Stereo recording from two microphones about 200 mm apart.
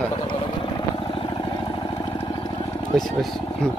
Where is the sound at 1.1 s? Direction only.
25° left (ahead or behind).